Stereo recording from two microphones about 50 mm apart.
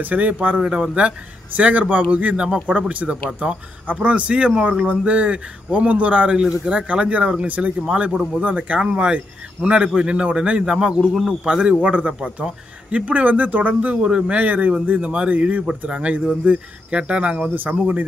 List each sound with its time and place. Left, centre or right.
0.0 s a man's voice: right
0.6 s speech: centre
1.6 s speech: right
2.6 s a man's voice: right; by 11.7 s centre
11.8 s a man's voice: right
14.0 s speech: centre
14.3 s a man's voice: right